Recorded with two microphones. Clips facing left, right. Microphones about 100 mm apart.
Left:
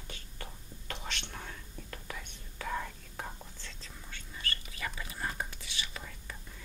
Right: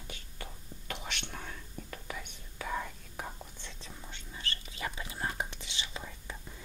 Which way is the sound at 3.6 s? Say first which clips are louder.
Right 2 dB; 20° right (ahead or behind).